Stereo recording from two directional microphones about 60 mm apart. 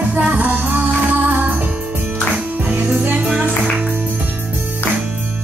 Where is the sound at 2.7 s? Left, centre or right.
Right.